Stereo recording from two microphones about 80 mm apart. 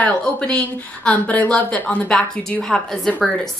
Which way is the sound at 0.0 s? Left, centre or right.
Centre.